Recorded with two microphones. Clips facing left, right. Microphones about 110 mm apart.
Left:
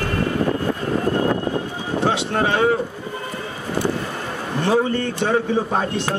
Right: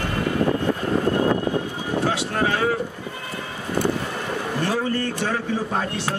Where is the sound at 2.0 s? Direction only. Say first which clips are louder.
Left 4 dB; 25° left (ahead or behind).